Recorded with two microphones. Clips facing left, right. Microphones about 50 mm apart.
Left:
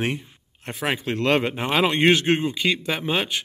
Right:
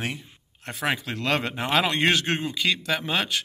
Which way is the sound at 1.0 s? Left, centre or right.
Left.